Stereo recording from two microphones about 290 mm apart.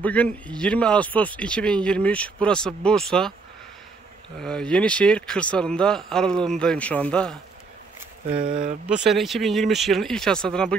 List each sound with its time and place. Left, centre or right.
0.0 s speech: centre
4.4 s speech: centre
8.3 s speech: centre
8.8 s speech: centre